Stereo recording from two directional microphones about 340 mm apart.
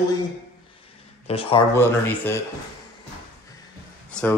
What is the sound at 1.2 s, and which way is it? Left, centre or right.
A man's voice, centre.